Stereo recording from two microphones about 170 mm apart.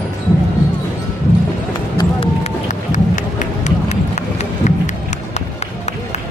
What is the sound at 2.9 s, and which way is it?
Run, 45° left (ahead or behind).